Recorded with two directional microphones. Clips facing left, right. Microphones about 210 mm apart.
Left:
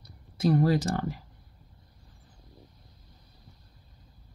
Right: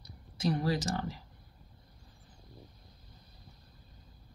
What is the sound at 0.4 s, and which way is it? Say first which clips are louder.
Speech: left 7 dB; 55° left (ahead or behind).